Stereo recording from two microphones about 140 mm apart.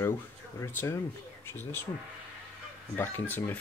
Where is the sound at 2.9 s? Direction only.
15° left (ahead or behind).